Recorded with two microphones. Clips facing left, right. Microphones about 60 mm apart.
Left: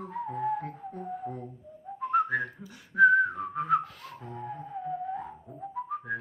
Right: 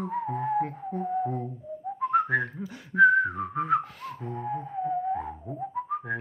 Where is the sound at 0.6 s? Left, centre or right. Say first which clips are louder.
Right 6 dB; right.